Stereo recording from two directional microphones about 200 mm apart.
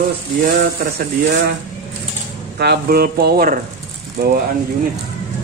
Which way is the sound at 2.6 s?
50° right (ahead or behind).